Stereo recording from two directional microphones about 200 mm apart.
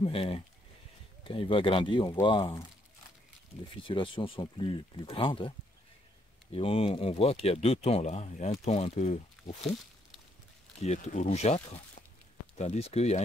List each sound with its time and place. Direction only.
0.0 s speech: 30° left (ahead or behind)
3.8 s speech: 25° left (ahead or behind)
6.5 s speech: 30° left (ahead or behind)
10.8 s speech: 35° left (ahead or behind)